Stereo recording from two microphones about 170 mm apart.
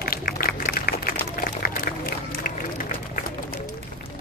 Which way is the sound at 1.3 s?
60° left (ahead or behind).